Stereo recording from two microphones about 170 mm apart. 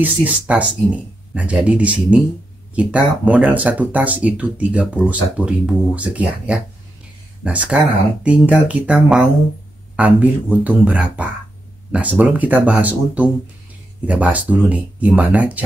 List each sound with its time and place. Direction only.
0.0 s speech: 10° right (ahead or behind)